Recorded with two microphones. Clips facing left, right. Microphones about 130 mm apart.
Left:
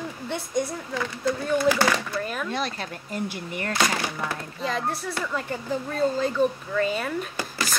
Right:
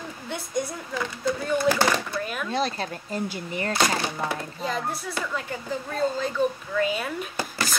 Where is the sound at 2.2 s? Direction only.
5° right (ahead or behind).